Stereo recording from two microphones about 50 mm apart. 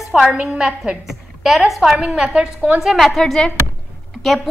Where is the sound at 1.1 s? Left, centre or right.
Centre.